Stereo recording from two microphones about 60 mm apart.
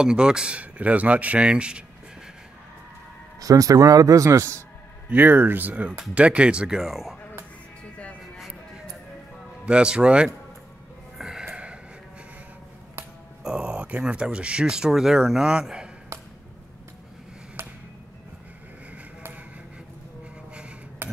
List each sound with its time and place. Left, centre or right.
0.0 s speech: centre
3.3 s speech: right
5.1 s speech: right; by 6.8 s centre
6.8 s speech: centre
9.7 s speech: centre
11.1 s a sound: centre
13.4 s speech: centre